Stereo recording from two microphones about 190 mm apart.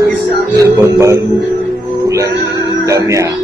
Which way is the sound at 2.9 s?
15° right (ahead or behind).